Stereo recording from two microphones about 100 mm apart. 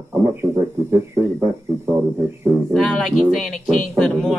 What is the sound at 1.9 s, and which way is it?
Speech, 25° right (ahead or behind).